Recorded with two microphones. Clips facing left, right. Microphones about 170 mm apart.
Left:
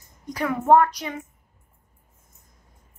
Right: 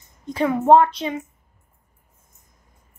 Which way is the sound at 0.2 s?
25° right (ahead or behind).